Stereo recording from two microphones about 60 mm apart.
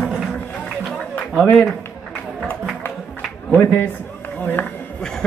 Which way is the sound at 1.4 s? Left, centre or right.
Left.